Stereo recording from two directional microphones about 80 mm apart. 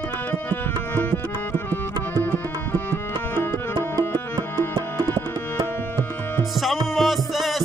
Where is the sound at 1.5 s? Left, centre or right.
Left.